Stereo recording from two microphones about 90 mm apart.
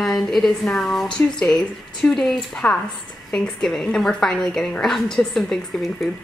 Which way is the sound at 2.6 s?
15° left (ahead or behind).